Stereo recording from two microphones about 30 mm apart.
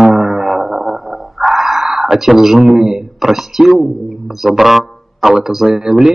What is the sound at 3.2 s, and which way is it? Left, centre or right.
Speech, centre.